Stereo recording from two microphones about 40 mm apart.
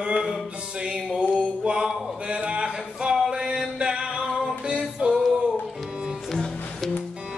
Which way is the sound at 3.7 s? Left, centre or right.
Right.